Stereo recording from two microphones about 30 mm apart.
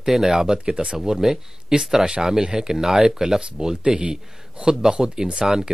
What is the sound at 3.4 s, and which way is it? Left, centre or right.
Speech, right.